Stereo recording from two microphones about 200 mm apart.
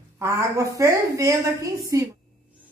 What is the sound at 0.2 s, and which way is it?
A woman's voice, 15° right (ahead or behind).